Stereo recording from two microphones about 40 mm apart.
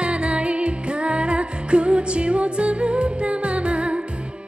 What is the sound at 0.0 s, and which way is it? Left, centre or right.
Music, right.